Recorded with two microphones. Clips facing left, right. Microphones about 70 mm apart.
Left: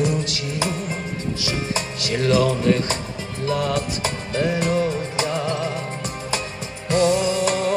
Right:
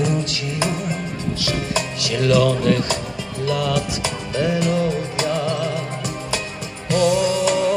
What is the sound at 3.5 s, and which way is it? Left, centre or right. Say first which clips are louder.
Music: right 1 dB; left.